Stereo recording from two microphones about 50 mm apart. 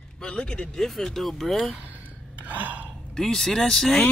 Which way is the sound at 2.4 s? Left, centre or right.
Right.